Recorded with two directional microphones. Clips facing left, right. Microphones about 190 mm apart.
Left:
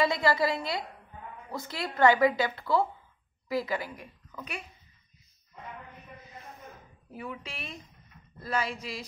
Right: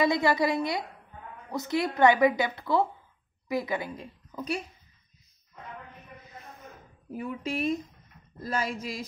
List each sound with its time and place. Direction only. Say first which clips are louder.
0.0 s a woman's voice: right 2 dB; 20° right (ahead or behind)
7.1 s speech: right 7 dB; 45° right (ahead or behind)